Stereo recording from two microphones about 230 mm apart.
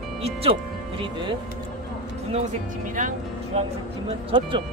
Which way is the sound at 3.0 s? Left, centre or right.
Right.